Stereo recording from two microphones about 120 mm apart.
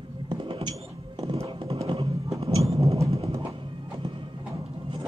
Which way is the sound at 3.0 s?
55° right (ahead or behind).